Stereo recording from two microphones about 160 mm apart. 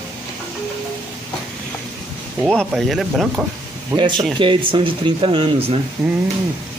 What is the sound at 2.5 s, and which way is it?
Speech, 5° left (ahead or behind).